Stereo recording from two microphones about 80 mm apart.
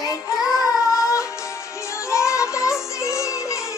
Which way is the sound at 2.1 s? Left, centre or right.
Left.